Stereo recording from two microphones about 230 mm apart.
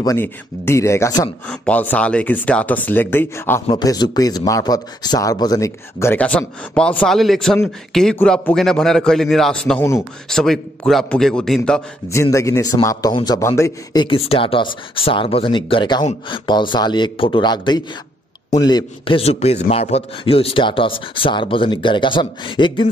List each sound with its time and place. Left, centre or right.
0.0 s a man's voice: centre
14.0 s a man's voice: left